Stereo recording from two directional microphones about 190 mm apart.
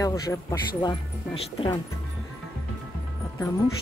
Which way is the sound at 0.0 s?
15° left (ahead or behind).